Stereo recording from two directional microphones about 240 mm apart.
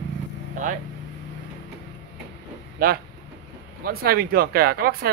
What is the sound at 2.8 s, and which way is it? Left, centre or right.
Speech, right.